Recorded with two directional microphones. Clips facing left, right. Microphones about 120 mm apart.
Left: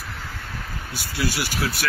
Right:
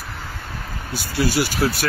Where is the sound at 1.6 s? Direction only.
40° right (ahead or behind).